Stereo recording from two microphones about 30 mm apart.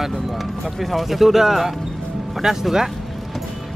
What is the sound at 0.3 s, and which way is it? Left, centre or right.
Speech, centre.